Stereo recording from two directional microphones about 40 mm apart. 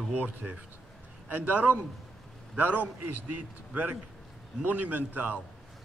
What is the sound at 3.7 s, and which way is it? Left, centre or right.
A man's voice, right.